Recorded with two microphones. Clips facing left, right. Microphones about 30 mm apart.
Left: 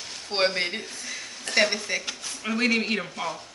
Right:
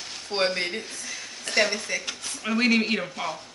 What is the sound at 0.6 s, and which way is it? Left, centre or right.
Speech, centre.